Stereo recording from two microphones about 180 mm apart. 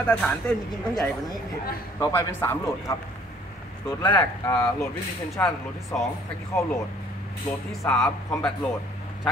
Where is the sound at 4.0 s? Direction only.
15° left (ahead or behind).